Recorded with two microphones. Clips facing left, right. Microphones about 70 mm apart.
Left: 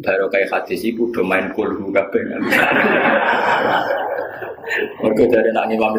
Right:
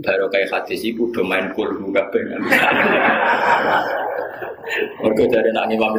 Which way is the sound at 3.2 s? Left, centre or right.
Right.